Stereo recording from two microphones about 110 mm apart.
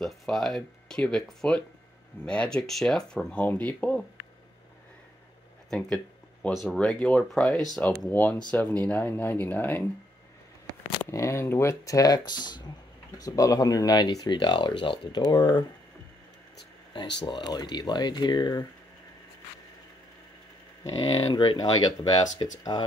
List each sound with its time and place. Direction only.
0.0 s speech: centre (ahead or behind)
5.7 s speech: 5° left (ahead or behind)
11.1 s speech: 25° left (ahead or behind); by 15.6 s 45° left (ahead or behind)
16.9 s speech: 40° left (ahead or behind)
21.1 s speech: 45° left (ahead or behind)